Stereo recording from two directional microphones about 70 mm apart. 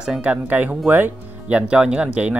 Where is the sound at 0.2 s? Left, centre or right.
Right.